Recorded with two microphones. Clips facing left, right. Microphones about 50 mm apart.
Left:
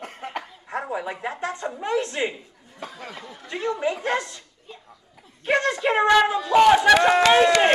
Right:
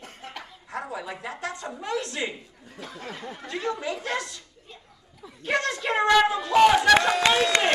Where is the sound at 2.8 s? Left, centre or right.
Left.